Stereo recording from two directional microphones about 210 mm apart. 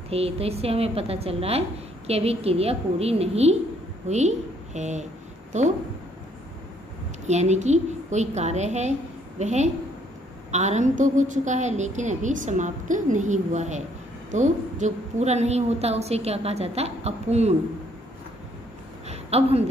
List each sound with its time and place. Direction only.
0.1 s a woman's voice: 30° right (ahead or behind)
7.2 s a woman's voice: 35° right (ahead or behind)
19.0 s a sound: 30° right (ahead or behind)